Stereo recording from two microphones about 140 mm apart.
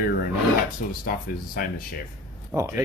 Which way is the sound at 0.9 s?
85° left.